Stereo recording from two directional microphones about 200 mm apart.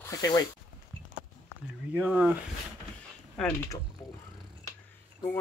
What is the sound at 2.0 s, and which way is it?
Mantra, 5° right (ahead or behind).